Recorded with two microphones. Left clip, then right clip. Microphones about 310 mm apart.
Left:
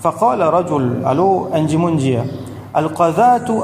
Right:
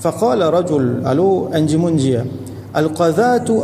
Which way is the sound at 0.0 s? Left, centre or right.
Centre.